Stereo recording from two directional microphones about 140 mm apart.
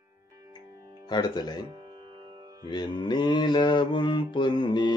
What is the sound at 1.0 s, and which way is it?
Mantra, 30° left (ahead or behind).